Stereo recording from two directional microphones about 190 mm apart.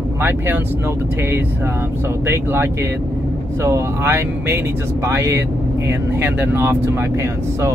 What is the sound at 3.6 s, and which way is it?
Speech, 15° right (ahead or behind).